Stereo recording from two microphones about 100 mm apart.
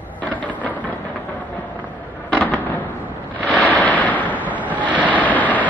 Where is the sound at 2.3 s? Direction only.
15° left (ahead or behind).